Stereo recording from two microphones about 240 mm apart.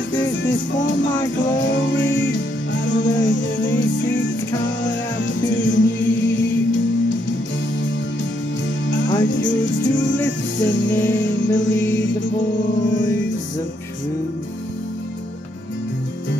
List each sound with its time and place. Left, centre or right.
0.1 s music: left
8.8 s music: left
10.9 s music: centre
11.1 s music: left
12.8 s music: left